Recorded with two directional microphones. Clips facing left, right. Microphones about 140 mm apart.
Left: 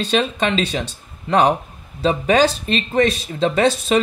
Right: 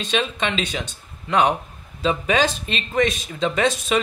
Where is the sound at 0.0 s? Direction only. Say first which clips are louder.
Left 4 dB; 35° left (ahead or behind).